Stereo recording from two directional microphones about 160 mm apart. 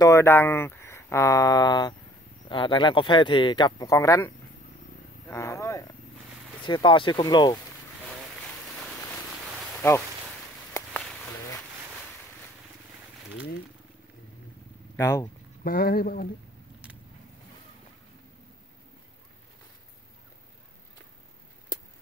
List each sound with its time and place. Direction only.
0.0 s speech: 20° left (ahead or behind)
5.3 s speech: 20° left (ahead or behind)
6.6 s speech: 30° left (ahead or behind)
8.4 s a sound: 5° left (ahead or behind)
9.8 s speech: 15° left (ahead or behind)
10.7 s a sound: 15° left (ahead or behind)
15.0 s speech: 20° left (ahead or behind)
15.6 s speech: 65° left (ahead or behind)